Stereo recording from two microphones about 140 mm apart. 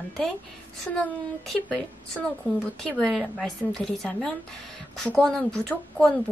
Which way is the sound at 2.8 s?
5° left (ahead or behind).